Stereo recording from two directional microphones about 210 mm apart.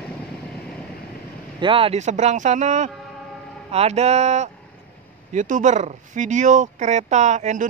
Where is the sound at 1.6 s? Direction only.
25° right (ahead or behind).